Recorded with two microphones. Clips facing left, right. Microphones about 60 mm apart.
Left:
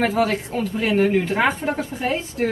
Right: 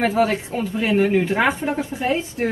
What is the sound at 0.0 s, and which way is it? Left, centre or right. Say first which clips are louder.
A woman's voice: right 1 dB; centre.